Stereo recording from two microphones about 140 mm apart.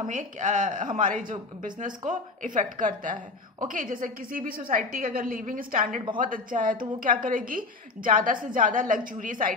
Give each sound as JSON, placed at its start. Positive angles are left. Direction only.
{"t": 0.0, "sound": "a woman's voice", "side_deg": -65}